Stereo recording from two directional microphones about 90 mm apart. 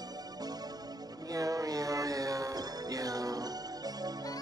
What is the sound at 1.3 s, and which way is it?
Music, 40° right (ahead or behind).